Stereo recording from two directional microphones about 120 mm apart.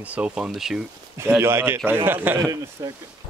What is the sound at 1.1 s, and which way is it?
Speech, 20° right (ahead or behind).